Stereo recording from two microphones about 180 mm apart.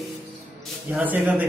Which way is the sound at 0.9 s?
10° right (ahead or behind).